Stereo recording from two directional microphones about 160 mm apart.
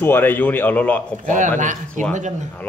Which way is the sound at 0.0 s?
15° left (ahead or behind).